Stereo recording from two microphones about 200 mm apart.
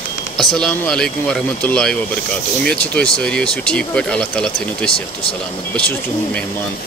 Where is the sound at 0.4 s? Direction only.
Centre (ahead or behind).